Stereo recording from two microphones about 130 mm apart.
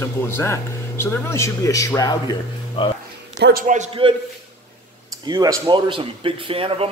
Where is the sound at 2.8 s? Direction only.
40° left (ahead or behind).